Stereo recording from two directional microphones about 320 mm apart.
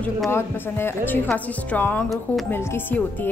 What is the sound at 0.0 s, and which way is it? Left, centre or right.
Speech, centre.